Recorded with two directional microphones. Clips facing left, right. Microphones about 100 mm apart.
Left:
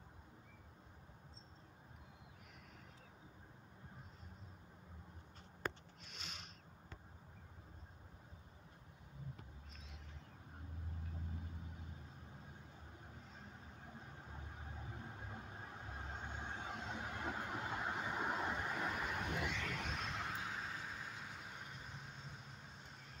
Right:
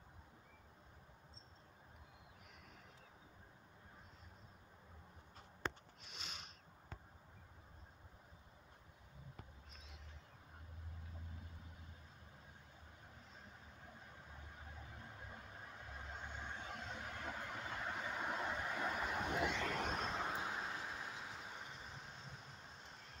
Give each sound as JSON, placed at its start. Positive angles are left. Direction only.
{"t": 6.0, "sound": "a sound", "side_deg": -15}
{"t": 15.9, "sound": "vehicle", "side_deg": 25}
{"t": 19.2, "sound": "vehicle", "side_deg": -30}
{"t": 19.9, "sound": "vehicle", "side_deg": -20}